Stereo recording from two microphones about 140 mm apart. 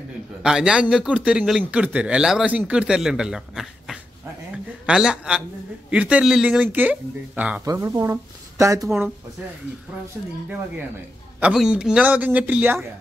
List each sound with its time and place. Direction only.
0.4 s a man's voice: 5° right (ahead or behind)
7.6 s speech: 20° right (ahead or behind)
11.5 s speech: 5° right (ahead or behind)